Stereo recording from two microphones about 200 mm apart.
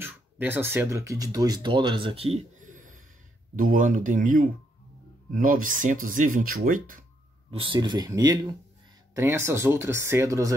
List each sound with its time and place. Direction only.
0.0 s speech: 10° right (ahead or behind); by 7.1 s 45° right (ahead or behind)
7.5 s speech: 25° right (ahead or behind)